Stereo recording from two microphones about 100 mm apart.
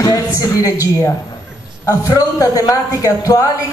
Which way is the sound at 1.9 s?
30° left (ahead or behind).